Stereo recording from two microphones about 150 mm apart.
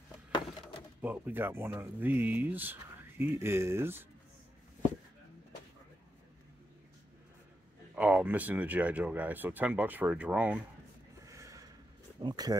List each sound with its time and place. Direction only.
1.0 s speech: 10° right (ahead or behind)
7.9 s speech: 10° right (ahead or behind)
11.2 s gasp: 20° right (ahead or behind)
12.2 s speech: 25° right (ahead or behind)